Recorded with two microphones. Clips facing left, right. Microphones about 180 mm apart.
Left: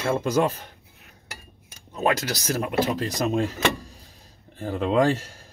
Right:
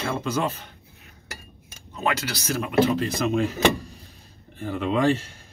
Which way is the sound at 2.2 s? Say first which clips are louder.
Left 1 dB; 40° left (ahead or behind).